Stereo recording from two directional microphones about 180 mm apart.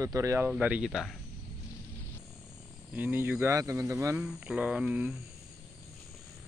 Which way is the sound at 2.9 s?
10° right (ahead or behind).